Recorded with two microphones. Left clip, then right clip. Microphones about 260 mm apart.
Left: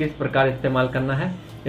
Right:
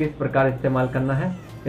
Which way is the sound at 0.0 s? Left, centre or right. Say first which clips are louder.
Even; centre.